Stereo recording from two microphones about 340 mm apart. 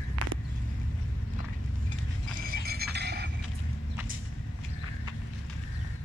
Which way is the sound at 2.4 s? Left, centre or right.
Right.